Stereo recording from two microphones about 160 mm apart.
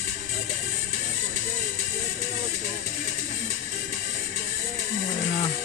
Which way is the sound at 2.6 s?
45° right (ahead or behind).